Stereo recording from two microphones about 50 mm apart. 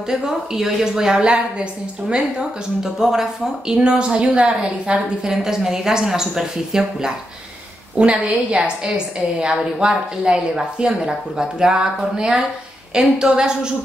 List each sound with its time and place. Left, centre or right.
0.1 s a woman's voice: centre
8.0 s a woman's voice: right